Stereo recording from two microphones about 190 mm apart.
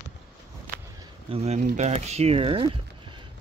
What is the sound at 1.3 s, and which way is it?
Speech, 35° right (ahead or behind).